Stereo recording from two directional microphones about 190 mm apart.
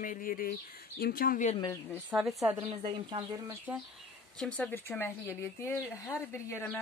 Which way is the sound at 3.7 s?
10° right (ahead or behind).